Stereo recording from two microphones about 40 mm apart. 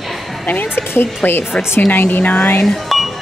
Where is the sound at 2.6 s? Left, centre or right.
Centre.